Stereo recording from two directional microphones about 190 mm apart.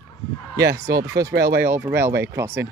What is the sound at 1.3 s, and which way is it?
Speech, 55° right (ahead or behind).